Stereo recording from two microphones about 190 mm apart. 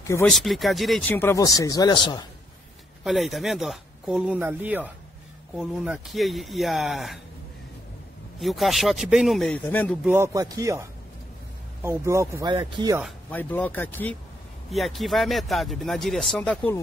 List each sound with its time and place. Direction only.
0.0 s speech: 15° left (ahead or behind)
0.3 s speech: centre (ahead or behind); by 2.2 s 25° left (ahead or behind)
3.0 s speech: centre (ahead or behind)
8.4 s speech: centre (ahead or behind)
10.0 s speech: 15° right (ahead or behind)
13.3 s speech: 10° left (ahead or behind)